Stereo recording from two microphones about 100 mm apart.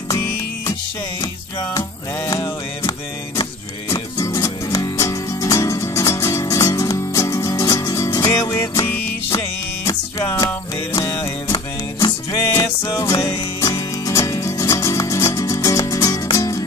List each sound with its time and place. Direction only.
1.2 s music: 35° left (ahead or behind)
11.0 s music: 35° left (ahead or behind)